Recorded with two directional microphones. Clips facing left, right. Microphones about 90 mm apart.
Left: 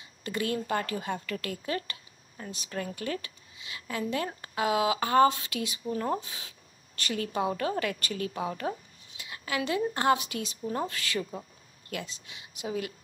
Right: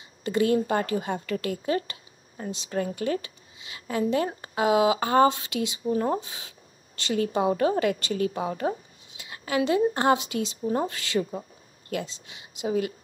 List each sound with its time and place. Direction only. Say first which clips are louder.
0.2 s a woman's voice: right 8 dB; 25° right (ahead or behind)